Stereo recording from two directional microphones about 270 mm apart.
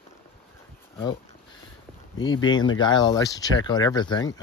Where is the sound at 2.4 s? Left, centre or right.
Centre.